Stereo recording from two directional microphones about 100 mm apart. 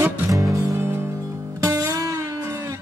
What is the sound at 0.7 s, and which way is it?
Music, 25° right (ahead or behind).